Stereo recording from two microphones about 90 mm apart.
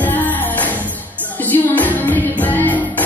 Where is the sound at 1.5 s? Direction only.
20° left (ahead or behind).